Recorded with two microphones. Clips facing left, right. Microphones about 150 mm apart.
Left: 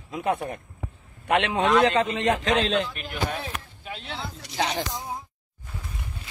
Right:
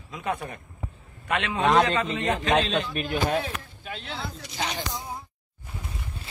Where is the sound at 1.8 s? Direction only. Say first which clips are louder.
Left 4 dB; 90° left.